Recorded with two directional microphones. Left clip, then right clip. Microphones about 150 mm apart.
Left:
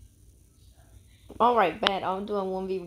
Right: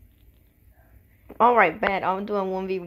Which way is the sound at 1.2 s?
10° right (ahead or behind).